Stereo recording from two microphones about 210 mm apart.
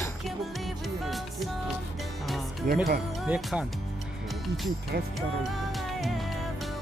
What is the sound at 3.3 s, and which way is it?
Speech, 5° right (ahead or behind).